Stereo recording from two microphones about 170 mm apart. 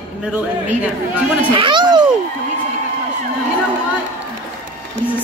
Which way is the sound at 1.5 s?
30° right (ahead or behind).